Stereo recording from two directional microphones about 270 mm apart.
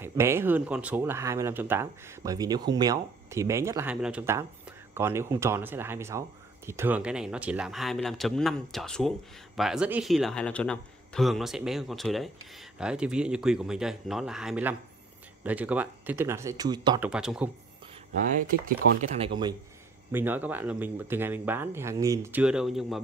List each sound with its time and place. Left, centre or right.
0.0 s speech: centre
17.1 s speech: centre
18.9 s speech: right
20.1 s speech: centre